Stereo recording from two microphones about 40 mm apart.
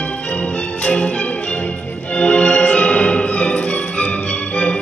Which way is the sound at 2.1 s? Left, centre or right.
Left.